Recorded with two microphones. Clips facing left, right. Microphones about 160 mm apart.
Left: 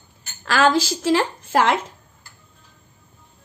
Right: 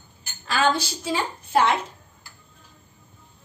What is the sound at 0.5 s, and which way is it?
A woman's voice, 90° left.